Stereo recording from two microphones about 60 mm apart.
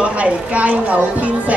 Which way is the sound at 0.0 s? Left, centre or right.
Right.